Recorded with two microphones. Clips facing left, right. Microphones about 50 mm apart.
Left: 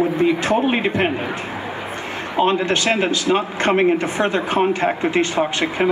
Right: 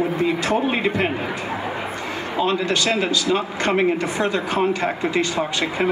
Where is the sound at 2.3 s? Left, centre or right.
Left.